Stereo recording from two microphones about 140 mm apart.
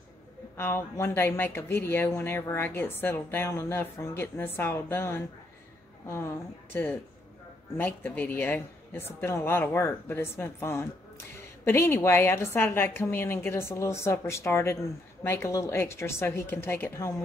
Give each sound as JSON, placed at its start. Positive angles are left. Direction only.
{"t": 0.6, "sound": "a woman's voice", "side_deg": 15}